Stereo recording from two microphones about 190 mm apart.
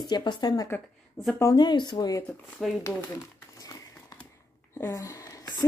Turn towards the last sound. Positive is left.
turn(degrees=20)  # may be behind; listen again after turning